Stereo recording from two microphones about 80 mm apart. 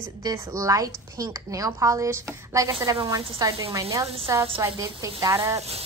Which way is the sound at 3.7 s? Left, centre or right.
Right.